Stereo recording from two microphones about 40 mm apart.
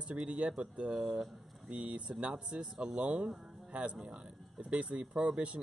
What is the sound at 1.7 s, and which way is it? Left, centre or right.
Speech, right.